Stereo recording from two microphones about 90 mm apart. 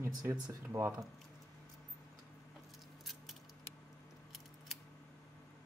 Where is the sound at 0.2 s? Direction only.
40° right (ahead or behind).